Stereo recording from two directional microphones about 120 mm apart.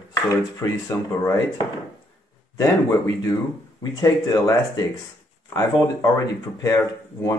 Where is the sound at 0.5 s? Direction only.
25° left (ahead or behind).